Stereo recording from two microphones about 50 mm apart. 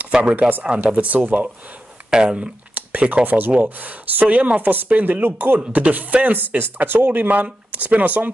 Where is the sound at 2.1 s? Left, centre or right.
Centre.